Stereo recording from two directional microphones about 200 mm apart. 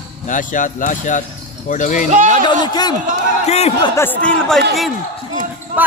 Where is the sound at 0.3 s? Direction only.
40° left (ahead or behind).